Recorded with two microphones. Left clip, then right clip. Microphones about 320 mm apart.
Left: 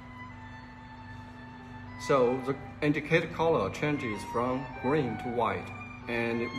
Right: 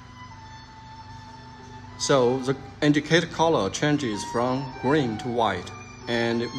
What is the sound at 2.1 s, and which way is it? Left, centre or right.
Speech, right.